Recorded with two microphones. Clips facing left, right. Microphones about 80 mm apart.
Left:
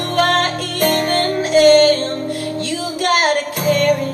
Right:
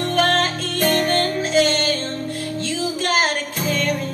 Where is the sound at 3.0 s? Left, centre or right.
Left.